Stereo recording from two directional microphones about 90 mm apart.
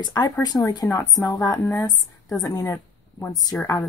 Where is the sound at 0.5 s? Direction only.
20° left (ahead or behind).